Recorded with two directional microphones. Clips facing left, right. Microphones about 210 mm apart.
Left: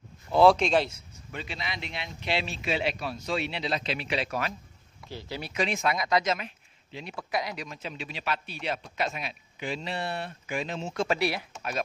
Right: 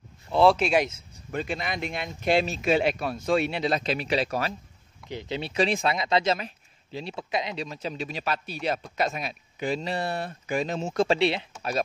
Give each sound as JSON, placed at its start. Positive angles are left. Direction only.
{"t": 0.3, "sound": "speech", "side_deg": 0}
{"t": 1.3, "sound": "speech", "side_deg": -50}
{"t": 5.0, "sound": "speech", "side_deg": -20}
{"t": 11.1, "sound": "speech", "side_deg": -25}